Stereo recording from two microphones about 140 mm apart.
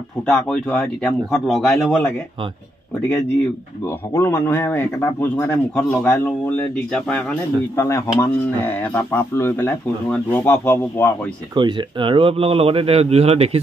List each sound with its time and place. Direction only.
0.3 s a man's voice: 5° left (ahead or behind)
3.8 s a man's voice: 15° left (ahead or behind)
7.7 s a man's voice: 20° left (ahead or behind)
11.5 s speech: 35° right (ahead or behind)